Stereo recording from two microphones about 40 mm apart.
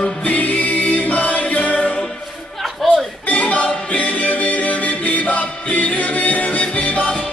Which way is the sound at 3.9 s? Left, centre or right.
Left.